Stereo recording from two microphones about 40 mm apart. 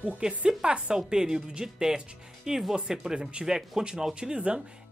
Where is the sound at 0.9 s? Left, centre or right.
Centre.